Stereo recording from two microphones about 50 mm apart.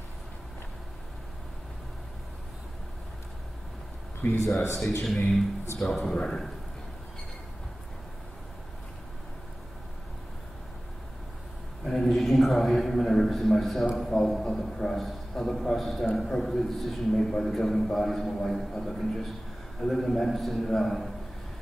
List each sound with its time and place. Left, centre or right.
4.2 s speech: left
5.0 s a man's voice: centre
11.8 s a man's voice: centre